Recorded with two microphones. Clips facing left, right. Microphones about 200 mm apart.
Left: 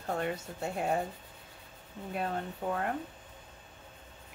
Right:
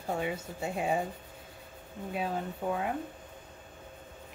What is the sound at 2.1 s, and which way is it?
Speech, centre (ahead or behind).